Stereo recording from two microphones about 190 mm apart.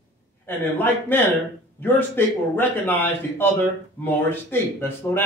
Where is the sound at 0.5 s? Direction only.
10° left (ahead or behind).